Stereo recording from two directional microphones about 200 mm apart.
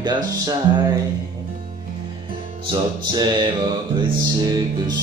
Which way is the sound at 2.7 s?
20° right (ahead or behind).